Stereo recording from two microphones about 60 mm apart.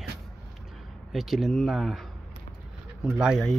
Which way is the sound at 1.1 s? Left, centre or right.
Centre.